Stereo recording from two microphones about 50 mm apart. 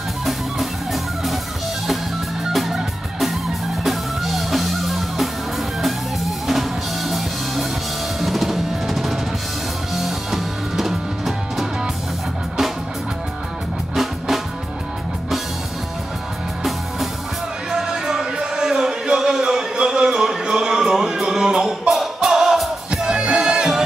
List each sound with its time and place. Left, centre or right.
0.2 s music: centre
2.5 s music: centre
6.4 s music: centre
8.2 s drum: centre
9.9 s music: centre
13.9 s music: centre
17.6 s music: centre
21.9 s music: centre